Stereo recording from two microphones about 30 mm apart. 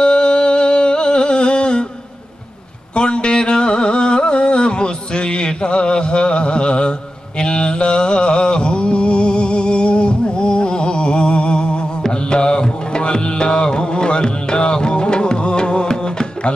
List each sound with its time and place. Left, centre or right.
0.0 s a sound: left
2.9 s carnatic music: left
12.1 s mantra: left
13.0 s music: left